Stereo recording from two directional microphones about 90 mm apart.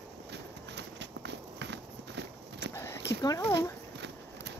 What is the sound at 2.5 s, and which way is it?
Clip-clop, 30° left (ahead or behind).